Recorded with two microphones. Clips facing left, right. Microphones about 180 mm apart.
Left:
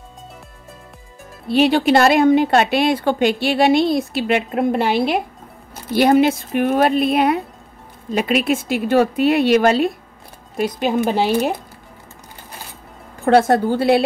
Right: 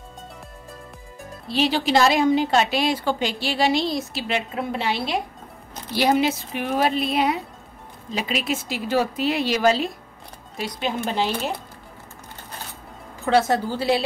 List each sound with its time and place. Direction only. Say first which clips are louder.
1.5 s a woman's voice: left 6 dB; 55° left (ahead or behind)
13.2 s a woman's voice: left 6 dB; 55° left (ahead or behind)